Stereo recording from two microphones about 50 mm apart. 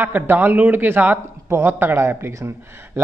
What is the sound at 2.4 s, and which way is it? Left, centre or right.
Speech, right.